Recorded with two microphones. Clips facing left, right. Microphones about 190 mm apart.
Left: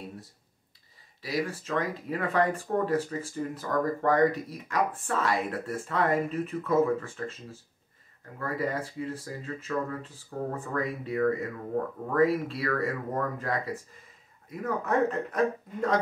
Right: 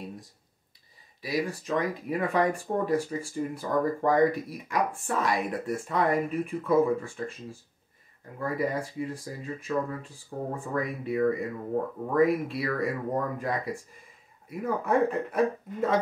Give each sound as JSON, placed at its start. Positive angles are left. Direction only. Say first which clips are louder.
{"t": 1.2, "sound": "speech", "louder": "right 1 dB", "side_deg": -15}
{"t": 8.4, "sound": "speech", "louder": "right 2 dB", "side_deg": -15}